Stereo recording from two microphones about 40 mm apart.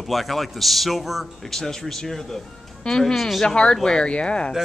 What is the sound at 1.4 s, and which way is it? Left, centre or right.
Speech, centre.